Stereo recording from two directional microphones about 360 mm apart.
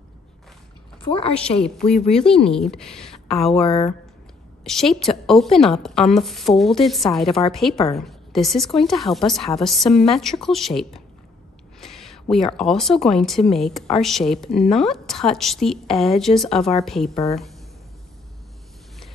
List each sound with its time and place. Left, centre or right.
1.0 s a woman's voice: centre
1.4 s speech: centre
3.5 s a woman's voice: centre
4.6 s speech: centre
11.8 s a sound: centre
12.5 s speech: centre
17.1 s a woman's voice: centre